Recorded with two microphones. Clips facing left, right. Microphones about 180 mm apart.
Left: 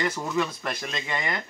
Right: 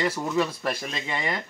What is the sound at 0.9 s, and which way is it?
Speech, 5° right (ahead or behind).